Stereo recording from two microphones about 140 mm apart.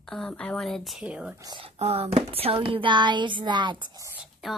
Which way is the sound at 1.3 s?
30° right (ahead or behind).